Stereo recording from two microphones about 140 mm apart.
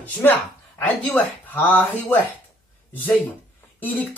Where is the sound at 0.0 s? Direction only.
15° left (ahead or behind).